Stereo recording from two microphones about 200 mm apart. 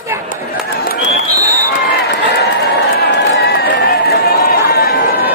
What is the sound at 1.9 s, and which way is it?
Run, 55° left (ahead or behind).